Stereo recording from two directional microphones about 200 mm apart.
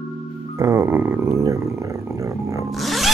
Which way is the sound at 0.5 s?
15° right (ahead or behind).